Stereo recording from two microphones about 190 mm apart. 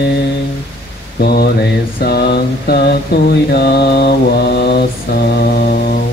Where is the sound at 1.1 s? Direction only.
55° left (ahead or behind).